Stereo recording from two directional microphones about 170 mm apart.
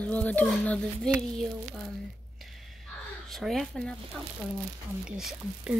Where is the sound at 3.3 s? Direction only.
Centre (ahead or behind).